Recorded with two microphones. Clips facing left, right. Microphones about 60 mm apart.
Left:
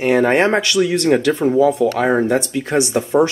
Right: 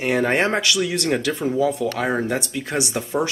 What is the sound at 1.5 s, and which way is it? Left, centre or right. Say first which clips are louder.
Speech: left 6 dB; left.